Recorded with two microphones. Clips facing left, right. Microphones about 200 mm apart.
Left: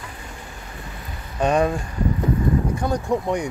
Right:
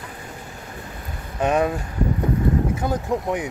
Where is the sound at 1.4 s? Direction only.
5° right (ahead or behind).